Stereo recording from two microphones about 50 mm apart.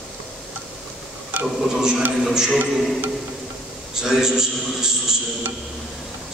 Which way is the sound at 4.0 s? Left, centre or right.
Centre.